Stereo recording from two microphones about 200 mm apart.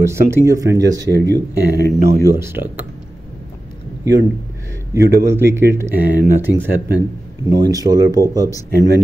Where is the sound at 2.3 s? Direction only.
10° right (ahead or behind).